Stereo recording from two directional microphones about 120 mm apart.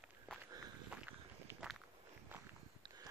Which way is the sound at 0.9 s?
15° right (ahead or behind).